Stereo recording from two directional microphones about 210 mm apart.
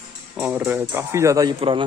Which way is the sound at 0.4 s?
5° right (ahead or behind).